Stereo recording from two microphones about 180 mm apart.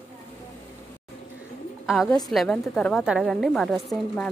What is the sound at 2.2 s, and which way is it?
A woman's voice, centre (ahead or behind).